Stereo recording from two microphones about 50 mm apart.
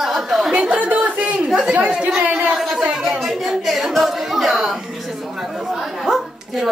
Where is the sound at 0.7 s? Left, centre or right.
Right.